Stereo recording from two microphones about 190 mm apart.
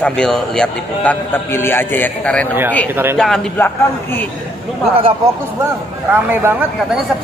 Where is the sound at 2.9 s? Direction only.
10° right (ahead or behind).